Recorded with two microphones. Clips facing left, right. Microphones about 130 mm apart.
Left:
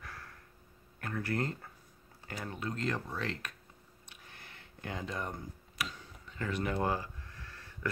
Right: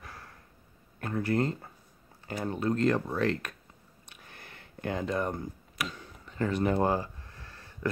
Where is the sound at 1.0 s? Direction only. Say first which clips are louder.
Right 6 dB; 25° right (ahead or behind).